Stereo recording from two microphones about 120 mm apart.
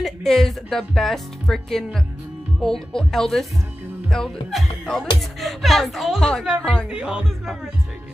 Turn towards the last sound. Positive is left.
turn(degrees=0)  # may be behind; listen again after turning